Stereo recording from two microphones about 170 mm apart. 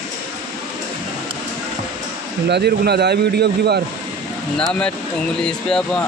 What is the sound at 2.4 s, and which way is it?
Speech, 75° right (ahead or behind).